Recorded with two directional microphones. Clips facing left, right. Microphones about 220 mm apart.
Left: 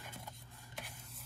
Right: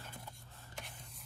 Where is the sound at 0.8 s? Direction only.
5° left (ahead or behind).